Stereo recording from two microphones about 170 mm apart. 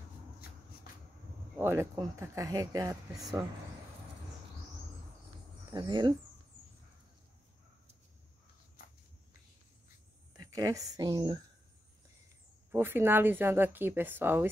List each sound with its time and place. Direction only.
1.6 s speech: 15° right (ahead or behind)
5.7 s speech: 25° right (ahead or behind)
10.3 s a woman's voice: 20° right (ahead or behind)
12.7 s a woman's voice: 10° right (ahead or behind)